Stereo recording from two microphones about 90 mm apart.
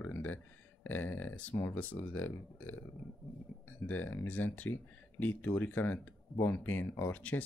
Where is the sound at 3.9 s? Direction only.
20° left (ahead or behind).